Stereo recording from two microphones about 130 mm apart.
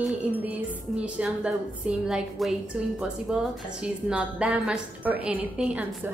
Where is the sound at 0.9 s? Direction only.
10° right (ahead or behind).